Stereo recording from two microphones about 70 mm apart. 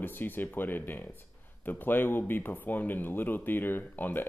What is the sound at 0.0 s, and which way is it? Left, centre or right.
Speech, left.